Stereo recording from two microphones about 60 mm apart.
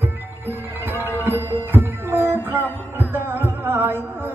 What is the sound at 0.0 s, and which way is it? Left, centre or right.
Music, right.